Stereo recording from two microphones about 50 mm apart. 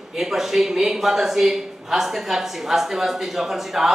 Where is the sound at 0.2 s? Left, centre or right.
Centre.